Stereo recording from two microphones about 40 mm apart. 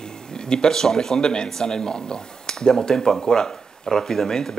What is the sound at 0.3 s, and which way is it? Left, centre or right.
Speech, centre.